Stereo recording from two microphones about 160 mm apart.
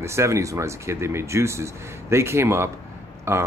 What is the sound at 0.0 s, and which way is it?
Speech, 15° right (ahead or behind).